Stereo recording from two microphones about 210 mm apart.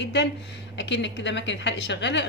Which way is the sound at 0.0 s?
55° left (ahead or behind).